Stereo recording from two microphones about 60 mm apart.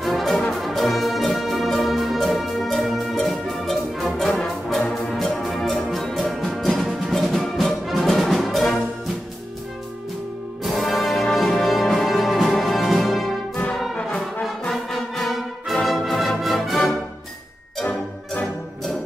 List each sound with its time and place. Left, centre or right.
0.0 s brass instrument: centre
4.6 s music: centre
10.6 s music: centre
14.6 s music: centre
17.8 s music: left